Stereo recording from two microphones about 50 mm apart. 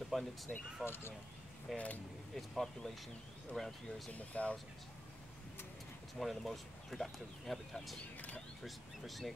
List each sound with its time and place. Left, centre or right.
0.1 s speech: centre
0.5 s speech: centre
0.8 s speech: left
1.7 s speech: centre
4.1 s speech: left
6.1 s speech: centre